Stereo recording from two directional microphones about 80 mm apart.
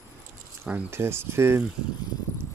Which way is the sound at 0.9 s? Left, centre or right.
Right.